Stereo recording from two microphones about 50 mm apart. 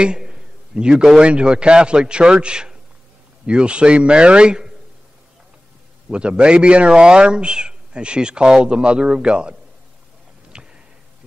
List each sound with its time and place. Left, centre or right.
0.0 s a man's voice: centre
6.0 s speech: centre
10.5 s a sound: centre